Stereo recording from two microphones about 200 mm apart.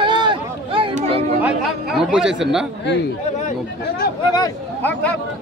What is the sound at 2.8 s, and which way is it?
Speech, 60° left (ahead or behind).